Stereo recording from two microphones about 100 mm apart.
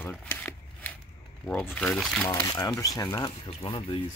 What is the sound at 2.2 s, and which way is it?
Speech, 40° left (ahead or behind).